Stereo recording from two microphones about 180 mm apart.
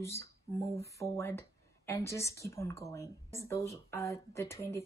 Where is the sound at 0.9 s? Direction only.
15° left (ahead or behind).